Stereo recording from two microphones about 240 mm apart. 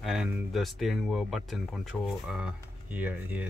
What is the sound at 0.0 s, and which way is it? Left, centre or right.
Speech, centre.